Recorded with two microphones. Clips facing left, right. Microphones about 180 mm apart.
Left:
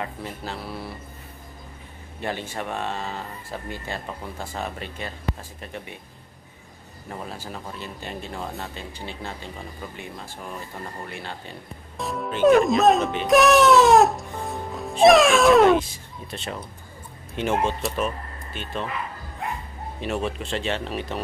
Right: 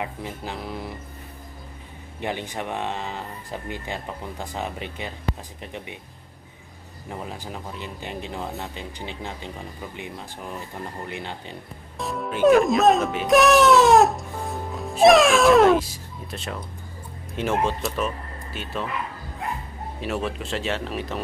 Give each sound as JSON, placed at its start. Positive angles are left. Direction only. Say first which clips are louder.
{"t": 0.0, "sound": "speech", "louder": "right 1 dB", "side_deg": -15}
{"t": 2.1, "sound": "speech", "louder": "right 1 dB", "side_deg": -15}
{"t": 7.1, "sound": "speech", "louder": "right 1 dB", "side_deg": -15}
{"t": 12.0, "sound": "speech", "louder": "even", "side_deg": 0}
{"t": 20.0, "sound": "speech", "louder": "left 1 dB", "side_deg": 0}